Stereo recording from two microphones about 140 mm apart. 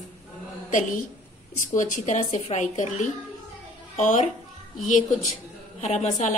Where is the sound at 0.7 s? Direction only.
65° left (ahead or behind).